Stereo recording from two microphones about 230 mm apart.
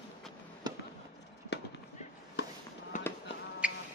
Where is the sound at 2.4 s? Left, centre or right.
Left.